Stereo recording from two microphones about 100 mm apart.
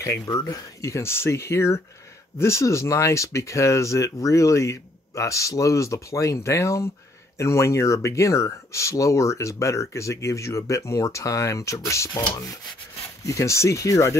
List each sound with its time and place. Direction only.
0.0 s speech: 35° left (ahead or behind)